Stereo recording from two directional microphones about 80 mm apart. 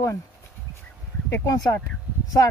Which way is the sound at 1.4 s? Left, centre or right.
Left.